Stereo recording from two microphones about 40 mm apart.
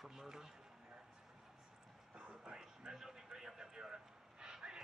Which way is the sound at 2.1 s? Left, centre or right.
Right.